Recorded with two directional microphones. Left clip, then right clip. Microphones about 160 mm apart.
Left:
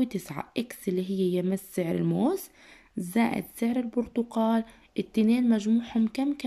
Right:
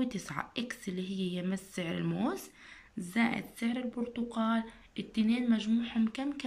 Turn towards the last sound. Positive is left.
turn(degrees=30)  # may be behind; listen again after turning